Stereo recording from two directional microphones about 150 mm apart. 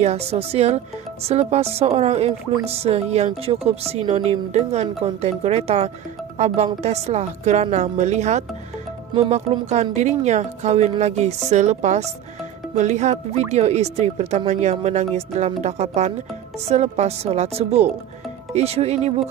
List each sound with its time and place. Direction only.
0.0 s speech: 45° right (ahead or behind)